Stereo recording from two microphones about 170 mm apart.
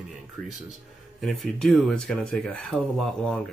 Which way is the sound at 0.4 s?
5° left (ahead or behind).